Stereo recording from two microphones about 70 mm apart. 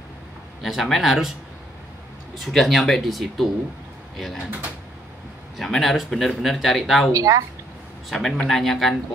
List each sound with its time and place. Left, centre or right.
0.6 s speech: centre
2.4 s speech: centre
4.5 s speech: right
5.6 s speech: centre
7.1 s speech: right
8.1 s speech: centre